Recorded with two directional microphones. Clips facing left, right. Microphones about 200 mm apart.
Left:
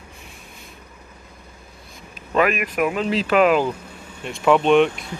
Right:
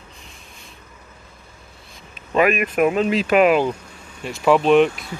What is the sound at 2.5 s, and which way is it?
Speech, 25° right (ahead or behind).